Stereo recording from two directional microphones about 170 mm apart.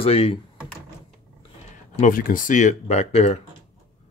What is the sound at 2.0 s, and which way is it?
Speech, 55° left (ahead or behind).